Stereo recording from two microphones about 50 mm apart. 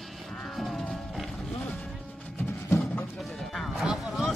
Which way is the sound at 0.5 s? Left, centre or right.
Centre.